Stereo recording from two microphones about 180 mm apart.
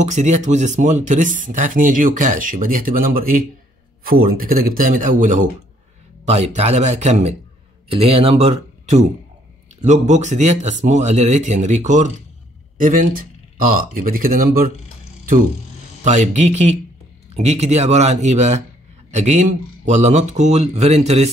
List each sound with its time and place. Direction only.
0.0 s speech: 40° right (ahead or behind)
16.0 s speech: 40° right (ahead or behind)